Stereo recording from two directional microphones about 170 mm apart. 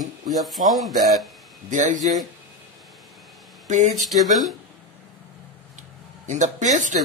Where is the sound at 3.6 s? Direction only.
45° right (ahead or behind).